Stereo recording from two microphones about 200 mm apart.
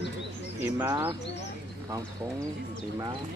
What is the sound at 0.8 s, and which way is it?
Speech, 15° right (ahead or behind).